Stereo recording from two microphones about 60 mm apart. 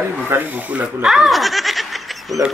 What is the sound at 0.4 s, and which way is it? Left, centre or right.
Speech, right.